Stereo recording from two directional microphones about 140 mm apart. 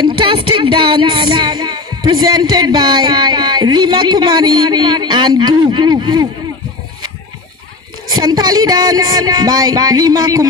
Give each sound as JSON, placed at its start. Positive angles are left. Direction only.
{"t": 0.0, "sound": "speech", "side_deg": -35}
{"t": 8.2, "sound": "speech", "side_deg": -30}